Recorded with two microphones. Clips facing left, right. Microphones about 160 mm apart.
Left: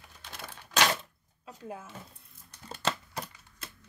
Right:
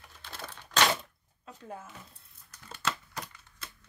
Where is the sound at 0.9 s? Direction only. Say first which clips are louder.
Right 1 dB; 5° left (ahead or behind).